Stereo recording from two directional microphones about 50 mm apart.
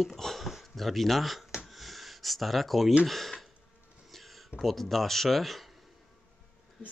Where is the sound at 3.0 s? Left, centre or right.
Centre.